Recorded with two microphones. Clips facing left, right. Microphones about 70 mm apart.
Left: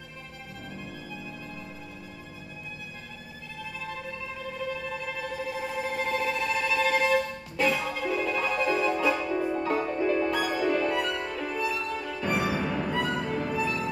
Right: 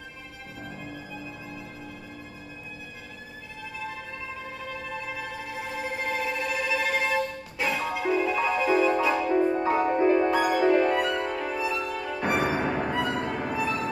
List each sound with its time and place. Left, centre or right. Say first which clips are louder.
5.7 s music: even; centre
9.1 s music: right 5 dB; right
11.2 s violin: right 2 dB; centre
12.2 s music: right 3 dB; right
12.9 s music: right 1 dB; centre
13.2 s music: even; right